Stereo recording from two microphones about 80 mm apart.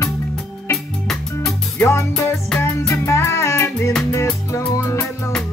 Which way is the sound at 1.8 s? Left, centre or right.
Left.